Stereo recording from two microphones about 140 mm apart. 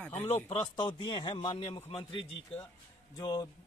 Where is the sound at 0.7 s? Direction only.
35° left (ahead or behind).